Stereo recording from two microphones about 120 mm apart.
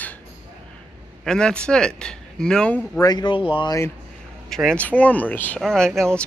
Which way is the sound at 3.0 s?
35° left (ahead or behind).